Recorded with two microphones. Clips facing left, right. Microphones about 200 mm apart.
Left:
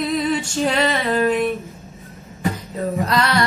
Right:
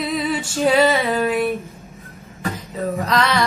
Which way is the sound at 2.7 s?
Centre (ahead or behind).